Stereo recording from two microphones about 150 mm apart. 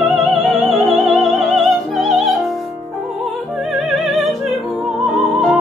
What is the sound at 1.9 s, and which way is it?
Music, centre (ahead or behind).